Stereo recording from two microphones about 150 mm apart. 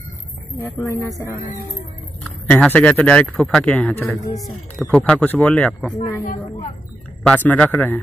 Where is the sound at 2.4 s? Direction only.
10° left (ahead or behind).